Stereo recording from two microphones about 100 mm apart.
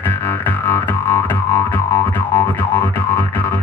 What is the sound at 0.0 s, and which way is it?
Music, 20° left (ahead or behind).